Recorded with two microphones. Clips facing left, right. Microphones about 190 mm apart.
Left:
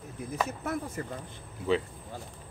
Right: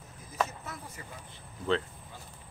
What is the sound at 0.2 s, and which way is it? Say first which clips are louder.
Speech: left 16 dB; 65° left (ahead or behind).